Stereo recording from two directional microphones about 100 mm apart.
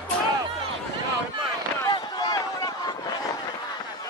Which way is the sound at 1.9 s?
40° left (ahead or behind).